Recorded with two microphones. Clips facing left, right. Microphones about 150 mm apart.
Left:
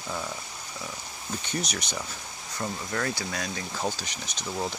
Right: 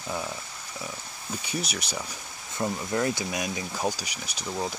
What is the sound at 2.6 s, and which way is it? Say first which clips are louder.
Speech: right 4 dB; 20° right (ahead or behind).